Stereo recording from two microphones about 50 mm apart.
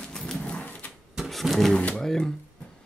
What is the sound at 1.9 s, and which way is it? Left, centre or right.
Speech, centre.